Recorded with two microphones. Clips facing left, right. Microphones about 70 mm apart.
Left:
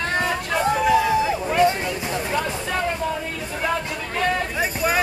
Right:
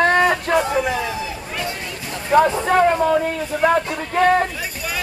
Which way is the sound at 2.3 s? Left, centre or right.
Right.